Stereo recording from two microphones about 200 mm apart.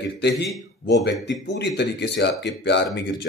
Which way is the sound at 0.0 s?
60° left (ahead or behind).